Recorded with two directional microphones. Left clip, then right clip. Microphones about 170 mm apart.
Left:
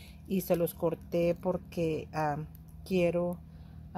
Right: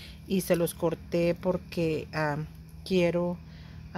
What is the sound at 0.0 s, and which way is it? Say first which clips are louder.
Speech: right 4 dB; 10° right (ahead or behind).